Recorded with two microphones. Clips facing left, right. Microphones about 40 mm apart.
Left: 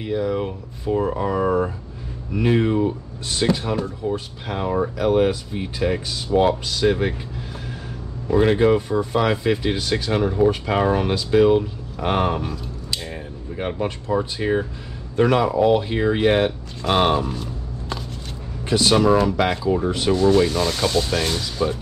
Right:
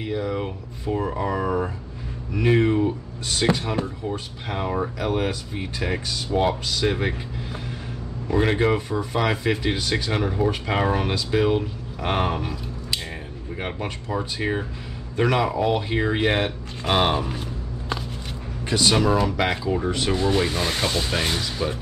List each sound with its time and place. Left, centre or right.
0.0 s speech: centre
4.5 s speech: centre
8.3 s speech: centre
14.1 s speech: centre
17.3 s a sound: right
18.7 s speech: centre
20.1 s speech: centre